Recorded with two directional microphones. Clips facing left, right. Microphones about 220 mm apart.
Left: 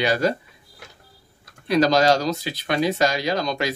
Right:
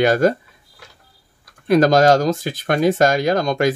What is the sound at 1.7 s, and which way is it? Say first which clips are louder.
Speech: right 5 dB; 50° right (ahead or behind).